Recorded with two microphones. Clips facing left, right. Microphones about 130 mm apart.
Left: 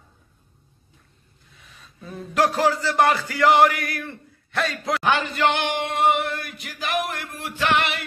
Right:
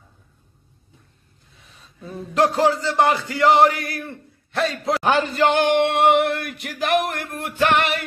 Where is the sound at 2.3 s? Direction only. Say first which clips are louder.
Right 2 dB; 25° right (ahead or behind); by 5.7 s 40° right (ahead or behind).